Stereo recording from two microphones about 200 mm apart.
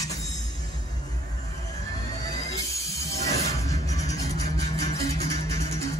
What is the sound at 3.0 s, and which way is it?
Music, 15° left (ahead or behind).